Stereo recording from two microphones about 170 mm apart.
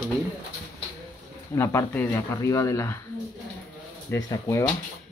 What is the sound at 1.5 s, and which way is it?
Speech, 15° left (ahead or behind).